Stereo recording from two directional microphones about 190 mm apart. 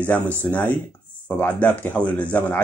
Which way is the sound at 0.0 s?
10° left (ahead or behind).